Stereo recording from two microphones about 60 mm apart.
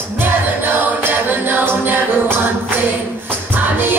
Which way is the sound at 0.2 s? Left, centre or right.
Right.